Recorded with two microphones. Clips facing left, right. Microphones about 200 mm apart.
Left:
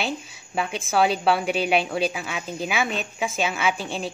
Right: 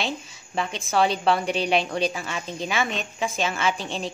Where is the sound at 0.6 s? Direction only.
5° left (ahead or behind).